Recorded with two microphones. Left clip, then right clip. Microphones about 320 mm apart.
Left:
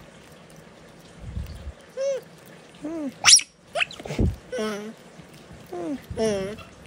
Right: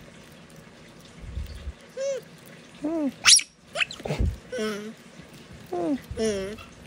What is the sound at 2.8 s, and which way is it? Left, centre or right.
Dog, centre.